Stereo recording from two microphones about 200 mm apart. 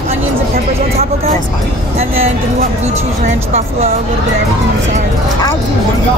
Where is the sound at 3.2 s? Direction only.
30° right (ahead or behind).